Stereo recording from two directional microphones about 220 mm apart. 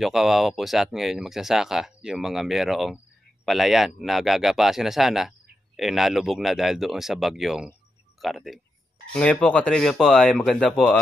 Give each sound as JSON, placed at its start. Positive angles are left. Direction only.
{"t": 0.0, "sound": "speech", "side_deg": 0}